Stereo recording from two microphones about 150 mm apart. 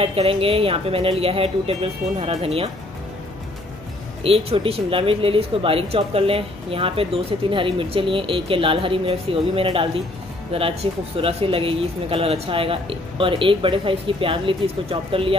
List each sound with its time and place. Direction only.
0.0 s speech: 40° right (ahead or behind)
4.2 s speech: 40° right (ahead or behind)